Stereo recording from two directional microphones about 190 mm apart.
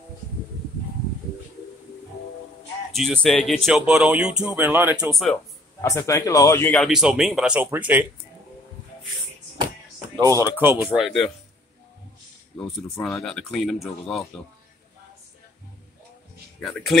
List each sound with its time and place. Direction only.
2.9 s speech: centre (ahead or behind)
5.2 s a sound: 5° left (ahead or behind)
5.9 s speech: 15° left (ahead or behind)
6.9 s speech: 5° right (ahead or behind)
10.5 s speech: 10° right (ahead or behind)
12.5 s speech: 5° left (ahead or behind)
16.6 s speech: centre (ahead or behind)